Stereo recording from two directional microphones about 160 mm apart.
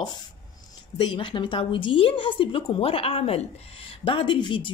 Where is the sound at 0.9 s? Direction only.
30° left (ahead or behind).